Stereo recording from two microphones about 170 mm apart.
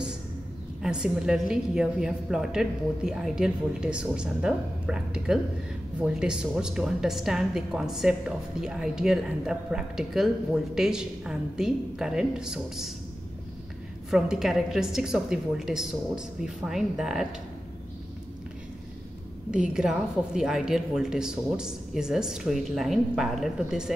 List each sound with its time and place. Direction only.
0.8 s a woman's voice: 5° right (ahead or behind)
14.1 s a woman's voice: 5° right (ahead or behind)
19.5 s a woman's voice: 5° right (ahead or behind)